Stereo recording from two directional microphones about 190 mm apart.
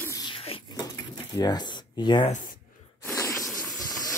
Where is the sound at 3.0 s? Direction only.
15° left (ahead or behind).